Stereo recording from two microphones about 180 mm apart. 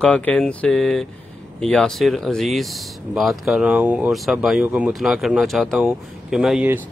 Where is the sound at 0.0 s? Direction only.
5° left (ahead or behind).